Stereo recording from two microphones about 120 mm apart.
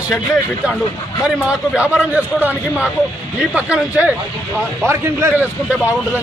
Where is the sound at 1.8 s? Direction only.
10° right (ahead or behind).